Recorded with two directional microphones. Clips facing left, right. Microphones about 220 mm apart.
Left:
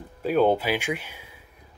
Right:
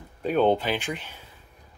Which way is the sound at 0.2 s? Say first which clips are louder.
Left 1 dB; 5° left (ahead or behind).